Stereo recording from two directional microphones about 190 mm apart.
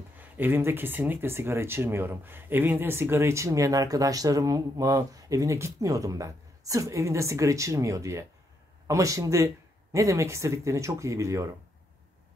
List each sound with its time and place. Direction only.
0.2 s speech: 10° right (ahead or behind)